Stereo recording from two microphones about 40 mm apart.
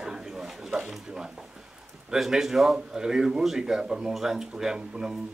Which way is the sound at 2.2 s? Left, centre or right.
Centre.